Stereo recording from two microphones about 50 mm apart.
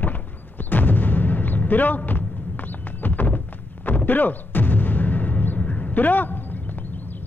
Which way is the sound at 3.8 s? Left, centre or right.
Left.